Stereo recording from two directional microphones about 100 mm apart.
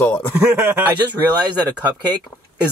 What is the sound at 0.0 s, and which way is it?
Speech, 15° left (ahead or behind).